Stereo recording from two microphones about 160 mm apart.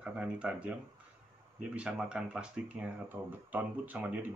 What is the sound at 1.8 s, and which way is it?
Speech, 5° right (ahead or behind).